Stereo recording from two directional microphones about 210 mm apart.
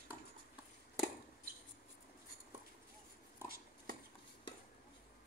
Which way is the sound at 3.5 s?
45° right (ahead or behind).